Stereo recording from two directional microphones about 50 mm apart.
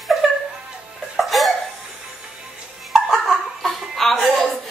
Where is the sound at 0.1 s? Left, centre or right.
Centre.